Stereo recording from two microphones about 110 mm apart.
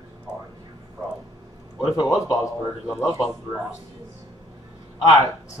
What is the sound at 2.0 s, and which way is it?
Speech, 30° left (ahead or behind).